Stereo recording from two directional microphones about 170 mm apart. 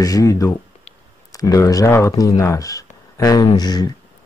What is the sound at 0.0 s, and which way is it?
Speech, 20° left (ahead or behind).